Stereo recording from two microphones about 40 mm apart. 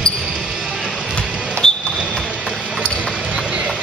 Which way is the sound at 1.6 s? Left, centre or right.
Centre.